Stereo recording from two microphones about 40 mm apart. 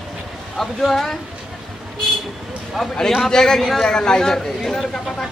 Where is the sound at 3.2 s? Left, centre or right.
Centre.